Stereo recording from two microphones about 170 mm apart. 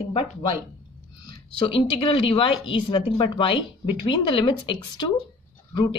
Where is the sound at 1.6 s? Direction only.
30° left (ahead or behind).